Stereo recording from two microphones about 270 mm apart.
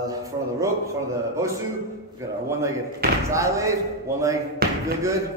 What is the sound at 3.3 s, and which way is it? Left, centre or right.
Speech, centre.